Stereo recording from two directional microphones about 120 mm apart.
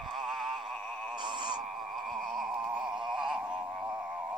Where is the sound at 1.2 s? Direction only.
40° right (ahead or behind).